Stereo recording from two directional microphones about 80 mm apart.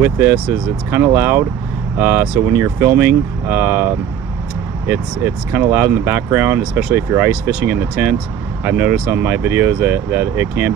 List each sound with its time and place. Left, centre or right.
0.0 s speech: right